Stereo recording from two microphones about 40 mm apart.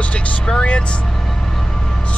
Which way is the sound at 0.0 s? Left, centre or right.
Left.